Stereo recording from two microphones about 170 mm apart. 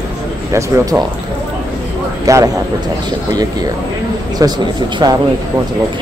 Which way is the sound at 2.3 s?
20° right (ahead or behind).